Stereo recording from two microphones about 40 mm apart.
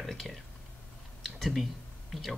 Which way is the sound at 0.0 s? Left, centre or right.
Centre.